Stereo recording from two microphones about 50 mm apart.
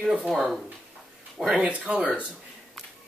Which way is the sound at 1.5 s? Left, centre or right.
Right.